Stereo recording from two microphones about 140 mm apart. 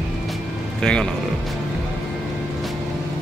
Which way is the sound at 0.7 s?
5° left (ahead or behind).